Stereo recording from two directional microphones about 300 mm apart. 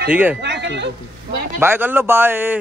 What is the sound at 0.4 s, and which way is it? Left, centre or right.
Speech, right.